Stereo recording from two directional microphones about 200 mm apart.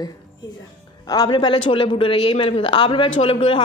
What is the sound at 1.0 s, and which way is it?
Speech, 20° left (ahead or behind).